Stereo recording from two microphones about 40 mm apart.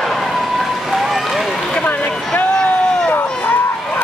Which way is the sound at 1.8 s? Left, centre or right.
Left.